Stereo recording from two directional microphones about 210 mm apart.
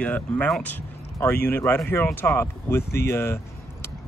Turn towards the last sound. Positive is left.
turn(degrees=10)  # may be behind; listen again after turning